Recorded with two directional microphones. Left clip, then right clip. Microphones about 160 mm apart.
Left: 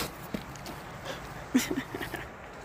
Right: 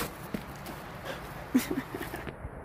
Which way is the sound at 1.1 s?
Centre (ahead or behind).